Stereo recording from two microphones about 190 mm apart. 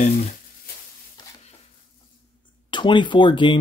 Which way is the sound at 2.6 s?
25° left (ahead or behind).